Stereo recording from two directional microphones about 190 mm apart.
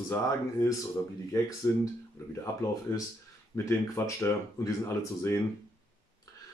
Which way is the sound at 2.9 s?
15° left (ahead or behind).